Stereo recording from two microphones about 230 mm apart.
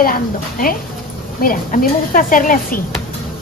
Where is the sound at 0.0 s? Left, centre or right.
Left.